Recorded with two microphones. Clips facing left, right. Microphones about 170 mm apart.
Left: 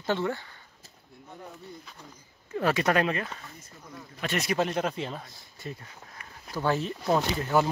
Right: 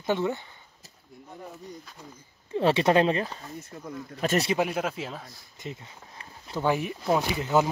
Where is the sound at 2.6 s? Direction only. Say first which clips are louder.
Right 4 dB; 25° right (ahead or behind).